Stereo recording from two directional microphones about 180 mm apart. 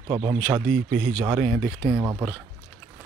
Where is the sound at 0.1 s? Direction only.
25° right (ahead or behind).